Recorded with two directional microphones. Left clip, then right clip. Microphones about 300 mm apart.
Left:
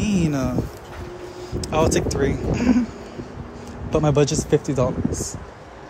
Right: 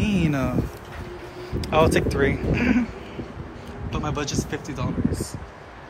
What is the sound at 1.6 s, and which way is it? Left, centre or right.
Speech, centre.